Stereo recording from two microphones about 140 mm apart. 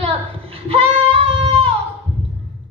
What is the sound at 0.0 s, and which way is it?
Child singing, 45° right (ahead or behind).